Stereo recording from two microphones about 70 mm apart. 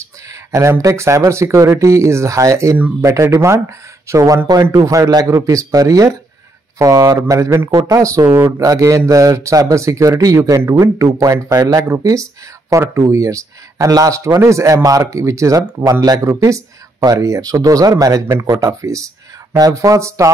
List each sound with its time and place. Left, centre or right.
0.5 s speech: right
16.3 s speech: right
18.3 s speech: right